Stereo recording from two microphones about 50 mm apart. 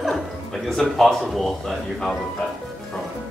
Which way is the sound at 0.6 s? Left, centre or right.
Centre.